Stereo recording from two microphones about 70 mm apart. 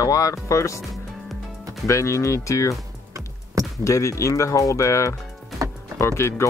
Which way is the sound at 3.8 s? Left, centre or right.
Left.